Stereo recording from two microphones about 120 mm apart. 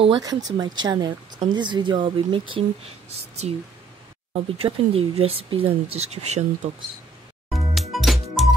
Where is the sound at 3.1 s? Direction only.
60° right (ahead or behind).